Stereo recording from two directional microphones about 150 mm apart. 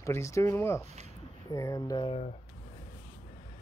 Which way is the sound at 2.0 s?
40° left (ahead or behind).